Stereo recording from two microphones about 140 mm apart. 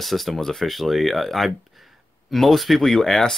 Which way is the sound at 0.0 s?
Centre (ahead or behind).